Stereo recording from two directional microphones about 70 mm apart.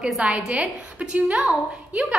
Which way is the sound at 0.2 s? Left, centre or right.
Centre.